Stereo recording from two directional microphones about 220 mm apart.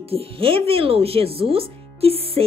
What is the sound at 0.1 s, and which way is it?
Speech, 25° right (ahead or behind).